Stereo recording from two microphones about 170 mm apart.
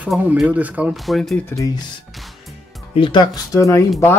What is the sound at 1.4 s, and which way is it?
Speech, 20° left (ahead or behind).